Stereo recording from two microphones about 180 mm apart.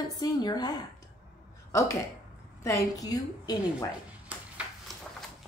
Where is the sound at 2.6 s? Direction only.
20° left (ahead or behind).